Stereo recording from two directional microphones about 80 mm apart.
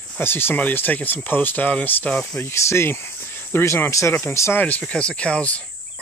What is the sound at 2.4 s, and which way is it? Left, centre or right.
Speech, left.